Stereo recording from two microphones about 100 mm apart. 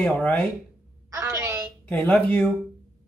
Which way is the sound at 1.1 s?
30° right (ahead or behind).